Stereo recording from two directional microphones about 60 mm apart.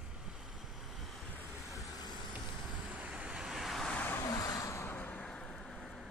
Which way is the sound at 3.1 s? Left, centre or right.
Centre.